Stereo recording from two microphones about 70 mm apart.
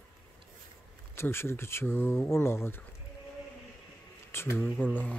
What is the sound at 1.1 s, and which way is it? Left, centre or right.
Speech, left.